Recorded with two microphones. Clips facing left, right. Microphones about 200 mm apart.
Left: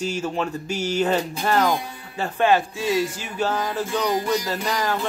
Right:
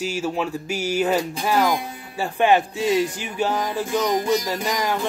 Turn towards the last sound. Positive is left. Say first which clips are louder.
# right 1 dB
turn(degrees=-15)  # may be behind; listen again after turning